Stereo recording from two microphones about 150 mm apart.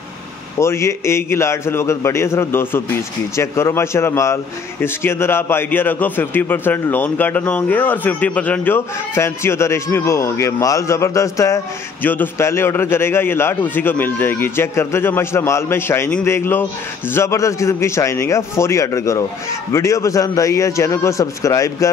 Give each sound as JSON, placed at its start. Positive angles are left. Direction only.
{"t": 0.6, "sound": "a man's voice", "side_deg": 20}